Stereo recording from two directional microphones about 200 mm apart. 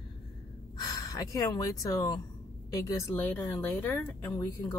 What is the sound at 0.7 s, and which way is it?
Speech, 20° left (ahead or behind).